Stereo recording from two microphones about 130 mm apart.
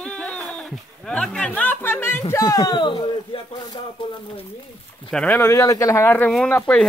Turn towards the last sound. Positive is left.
turn(degrees=10)  # may be behind; listen again after turning